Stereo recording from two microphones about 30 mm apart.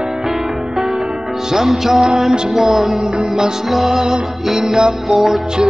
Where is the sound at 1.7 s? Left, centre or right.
Centre.